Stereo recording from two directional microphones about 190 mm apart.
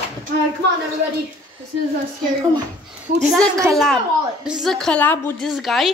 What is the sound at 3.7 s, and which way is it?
Speech, centre (ahead or behind).